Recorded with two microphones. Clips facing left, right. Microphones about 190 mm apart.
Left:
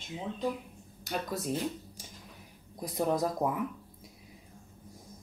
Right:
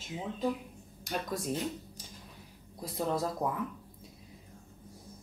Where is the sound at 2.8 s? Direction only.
15° left (ahead or behind).